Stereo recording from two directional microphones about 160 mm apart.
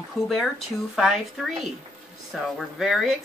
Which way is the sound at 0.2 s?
Centre (ahead or behind).